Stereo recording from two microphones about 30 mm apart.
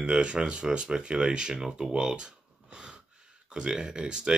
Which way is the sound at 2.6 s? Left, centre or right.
Right.